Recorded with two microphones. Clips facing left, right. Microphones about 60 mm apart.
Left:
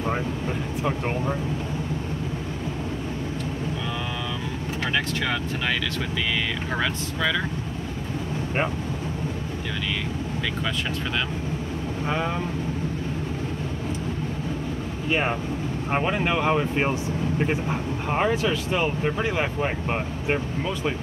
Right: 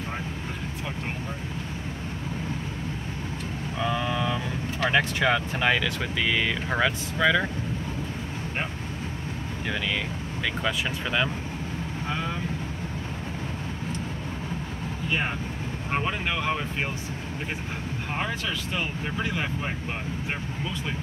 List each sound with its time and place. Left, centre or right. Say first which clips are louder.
4.8 s speech: right 4 dB; centre
15.9 s speech: left 4 dB; centre
18.3 s speech: left 7 dB; centre